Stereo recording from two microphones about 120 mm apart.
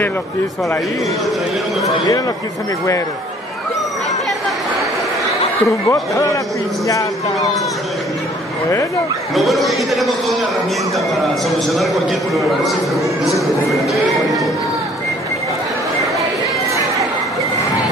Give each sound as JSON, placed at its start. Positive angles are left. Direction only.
{"t": 1.8, "sound": "speech", "side_deg": 30}
{"t": 5.9, "sound": "a man's voice", "side_deg": 25}
{"t": 9.3, "sound": "a man's voice", "side_deg": 0}